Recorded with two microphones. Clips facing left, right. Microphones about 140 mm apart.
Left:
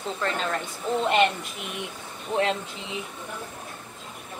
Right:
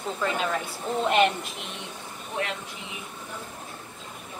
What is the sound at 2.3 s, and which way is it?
Speech, 30° left (ahead or behind).